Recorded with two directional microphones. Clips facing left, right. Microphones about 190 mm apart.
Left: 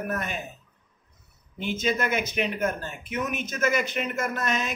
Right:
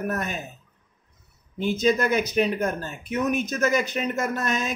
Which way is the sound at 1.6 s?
40° right (ahead or behind).